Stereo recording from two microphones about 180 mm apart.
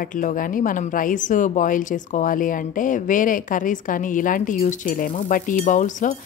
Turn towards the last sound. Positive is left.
turn(degrees=45)  # may be behind; listen again after turning